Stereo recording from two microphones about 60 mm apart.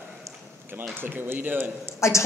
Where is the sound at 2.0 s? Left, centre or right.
Left.